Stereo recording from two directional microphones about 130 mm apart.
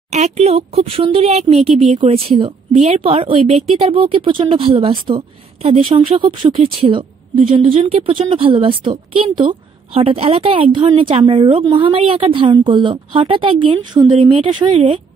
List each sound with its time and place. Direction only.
0.1 s a woman's voice: 55° right (ahead or behind); by 15.0 s 40° right (ahead or behind)